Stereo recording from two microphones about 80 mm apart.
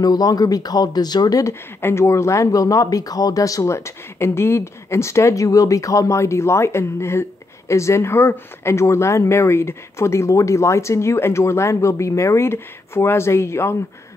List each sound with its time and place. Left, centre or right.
0.0 s speech: left
1.4 s speech: left